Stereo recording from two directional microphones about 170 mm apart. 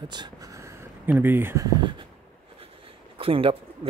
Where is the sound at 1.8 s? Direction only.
30° right (ahead or behind).